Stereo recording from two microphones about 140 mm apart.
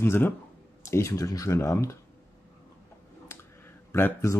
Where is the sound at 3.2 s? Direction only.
15° left (ahead or behind).